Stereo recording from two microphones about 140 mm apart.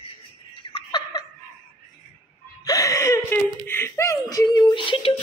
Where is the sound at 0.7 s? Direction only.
30° left (ahead or behind).